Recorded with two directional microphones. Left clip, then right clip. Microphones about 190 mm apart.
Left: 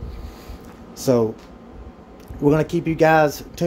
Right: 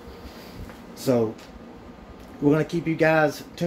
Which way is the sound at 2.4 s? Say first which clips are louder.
Left 4 dB; 30° left (ahead or behind).